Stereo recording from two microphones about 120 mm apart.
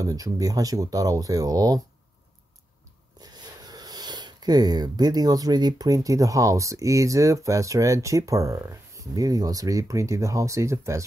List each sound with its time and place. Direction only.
0.0 s speech: 30° right (ahead or behind)
3.2 s speech: 35° right (ahead or behind)